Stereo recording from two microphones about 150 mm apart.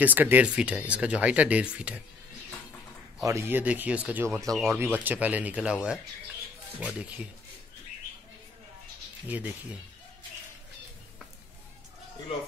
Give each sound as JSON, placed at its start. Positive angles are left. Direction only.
{"t": 0.0, "sound": "speech", "side_deg": -10}
{"t": 3.2, "sound": "speech", "side_deg": -20}
{"t": 9.3, "sound": "speech", "side_deg": -10}